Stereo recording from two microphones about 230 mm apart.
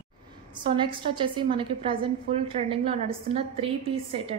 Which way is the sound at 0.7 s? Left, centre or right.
Right.